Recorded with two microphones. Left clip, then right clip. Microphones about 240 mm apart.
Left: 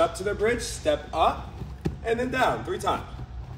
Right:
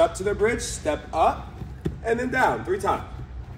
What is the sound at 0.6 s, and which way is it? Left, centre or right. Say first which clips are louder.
Speech: left 1 dB; right.